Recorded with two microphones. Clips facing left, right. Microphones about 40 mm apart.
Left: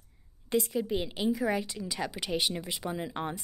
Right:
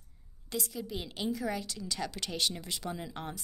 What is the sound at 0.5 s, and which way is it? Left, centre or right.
Speech, left.